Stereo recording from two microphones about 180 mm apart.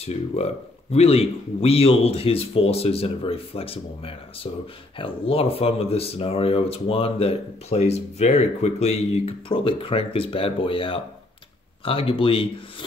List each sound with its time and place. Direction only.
0.0 s speech: 35° left (ahead or behind)